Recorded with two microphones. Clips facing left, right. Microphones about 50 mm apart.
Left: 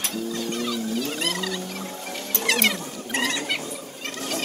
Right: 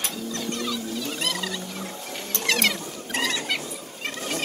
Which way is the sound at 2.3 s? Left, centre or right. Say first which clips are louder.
Left 1 dB; centre.